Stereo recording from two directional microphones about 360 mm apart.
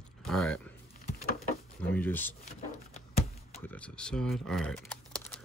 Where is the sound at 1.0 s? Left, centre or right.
Left.